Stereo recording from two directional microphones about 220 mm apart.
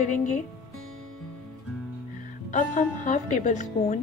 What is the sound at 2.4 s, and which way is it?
Speech, 35° left (ahead or behind).